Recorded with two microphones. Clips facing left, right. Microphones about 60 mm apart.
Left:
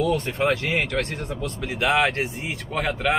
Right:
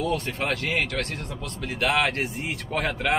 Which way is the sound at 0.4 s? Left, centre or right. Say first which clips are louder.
Left 4 dB; left.